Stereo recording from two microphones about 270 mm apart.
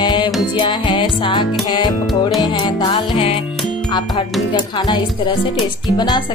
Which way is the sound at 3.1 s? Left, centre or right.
Left.